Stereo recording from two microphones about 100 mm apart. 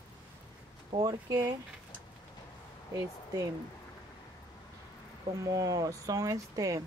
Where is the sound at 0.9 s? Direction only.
35° right (ahead or behind).